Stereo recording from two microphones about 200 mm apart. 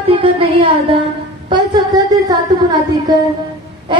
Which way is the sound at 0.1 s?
25° right (ahead or behind).